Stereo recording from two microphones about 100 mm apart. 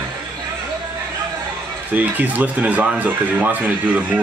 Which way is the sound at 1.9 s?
15° right (ahead or behind).